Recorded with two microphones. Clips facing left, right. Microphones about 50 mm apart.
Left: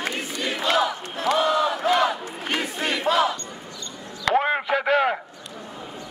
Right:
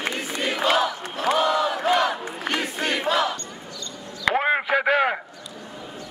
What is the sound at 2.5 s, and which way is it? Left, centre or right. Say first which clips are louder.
Battle cry: even; centre.